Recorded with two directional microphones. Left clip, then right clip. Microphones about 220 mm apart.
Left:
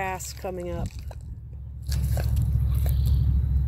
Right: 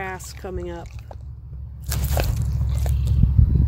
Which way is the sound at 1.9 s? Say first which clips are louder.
Right 9 dB; 45° right (ahead or behind).